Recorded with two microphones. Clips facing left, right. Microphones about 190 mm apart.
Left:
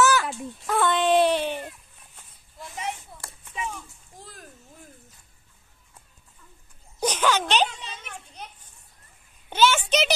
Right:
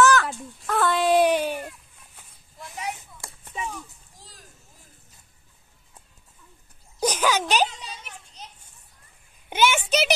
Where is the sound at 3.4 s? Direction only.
35° right (ahead or behind).